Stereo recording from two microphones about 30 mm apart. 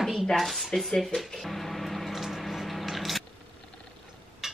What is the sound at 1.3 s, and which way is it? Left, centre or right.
Music, centre.